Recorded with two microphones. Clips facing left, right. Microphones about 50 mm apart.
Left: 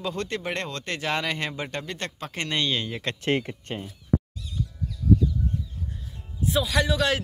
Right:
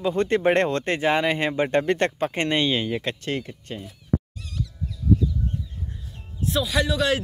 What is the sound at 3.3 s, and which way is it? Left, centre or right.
Speech, left.